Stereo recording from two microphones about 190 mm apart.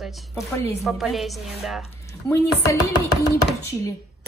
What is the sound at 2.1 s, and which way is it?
Speech, 15° left (ahead or behind).